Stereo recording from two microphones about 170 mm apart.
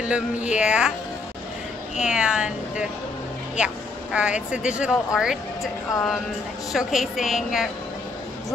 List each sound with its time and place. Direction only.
0.0 s speech: 5° right (ahead or behind)
2.0 s speech: 5° right (ahead or behind)